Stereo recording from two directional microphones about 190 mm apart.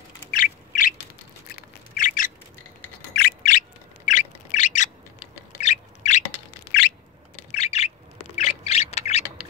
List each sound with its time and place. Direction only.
0.3 s bird: 45° left (ahead or behind)
2.0 s squawk: 45° left (ahead or behind)
3.1 s bird: 60° left (ahead or behind); by 6.2 s 40° left (ahead or behind)
7.5 s bird: 35° left (ahead or behind)
8.4 s squawk: 35° left (ahead or behind)